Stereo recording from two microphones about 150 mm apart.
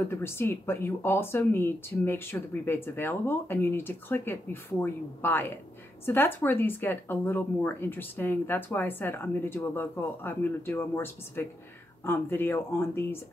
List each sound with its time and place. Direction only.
0.1 s speech: 15° left (ahead or behind)